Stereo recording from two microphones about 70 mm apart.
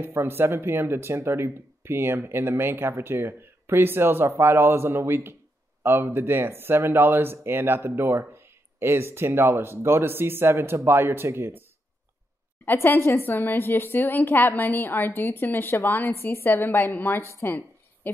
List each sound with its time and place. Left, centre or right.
0.0 s speech: right
12.6 s a woman's voice: left
17.4 s a sound: left